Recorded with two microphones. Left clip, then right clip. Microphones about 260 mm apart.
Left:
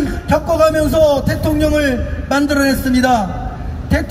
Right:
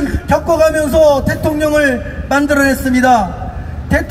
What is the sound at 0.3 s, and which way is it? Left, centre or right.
A man's voice, centre.